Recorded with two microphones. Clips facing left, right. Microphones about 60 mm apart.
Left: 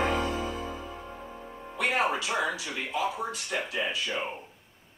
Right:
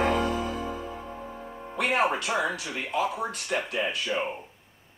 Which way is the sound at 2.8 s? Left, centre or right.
Right.